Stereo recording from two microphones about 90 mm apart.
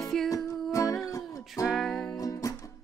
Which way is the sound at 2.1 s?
40° left (ahead or behind).